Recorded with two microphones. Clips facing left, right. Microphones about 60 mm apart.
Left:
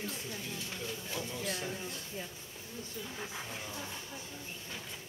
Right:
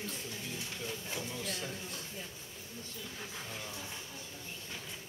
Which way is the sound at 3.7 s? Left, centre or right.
Left.